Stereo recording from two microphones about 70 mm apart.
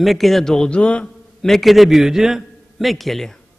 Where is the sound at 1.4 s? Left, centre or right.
Centre.